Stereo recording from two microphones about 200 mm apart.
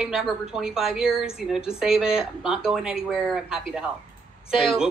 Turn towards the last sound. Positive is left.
turn(degrees=-5)  # may be behind; listen again after turning